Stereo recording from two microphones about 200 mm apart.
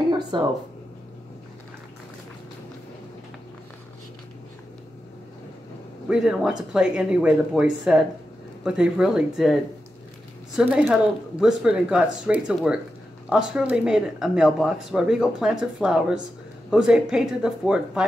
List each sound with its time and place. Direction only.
0.3 s speech: 25° right (ahead or behind)
6.0 s speech: 5° right (ahead or behind)